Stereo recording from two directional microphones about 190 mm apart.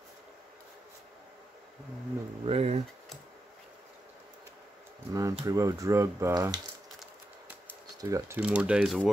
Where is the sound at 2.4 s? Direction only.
35° right (ahead or behind).